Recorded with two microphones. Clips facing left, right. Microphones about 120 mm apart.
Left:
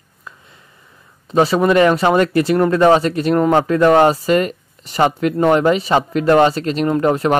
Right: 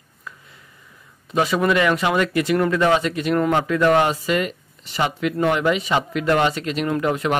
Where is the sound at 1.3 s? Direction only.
35° left (ahead or behind).